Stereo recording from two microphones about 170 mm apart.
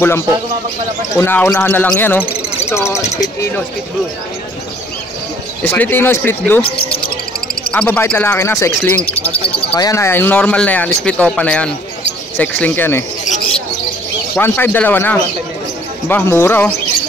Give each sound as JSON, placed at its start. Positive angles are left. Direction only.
{"t": 1.1, "sound": "speech", "side_deg": 15}
{"t": 5.6, "sound": "speech", "side_deg": 10}
{"t": 7.7, "sound": "speech", "side_deg": 10}
{"t": 14.3, "sound": "speech", "side_deg": 10}